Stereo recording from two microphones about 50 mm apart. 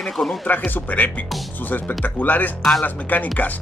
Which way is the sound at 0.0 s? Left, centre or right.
Centre.